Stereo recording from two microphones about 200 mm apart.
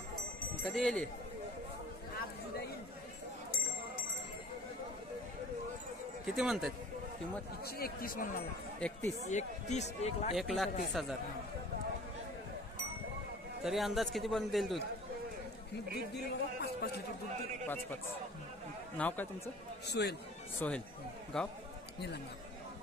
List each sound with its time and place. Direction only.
0.6 s speech: 5° left (ahead or behind)
6.3 s a man's voice: centre (ahead or behind)
7.6 s speech: 50° left (ahead or behind)
8.7 s a man's voice: 5° left (ahead or behind)
9.2 s speech: 35° left (ahead or behind)
10.3 s a man's voice: centre (ahead or behind)
13.7 s a man's voice: centre (ahead or behind)
16.2 s speech: 55° left (ahead or behind)
18.9 s speech: 10° left (ahead or behind)
19.9 s speech: 55° left (ahead or behind)
20.6 s a man's voice: 10° left (ahead or behind)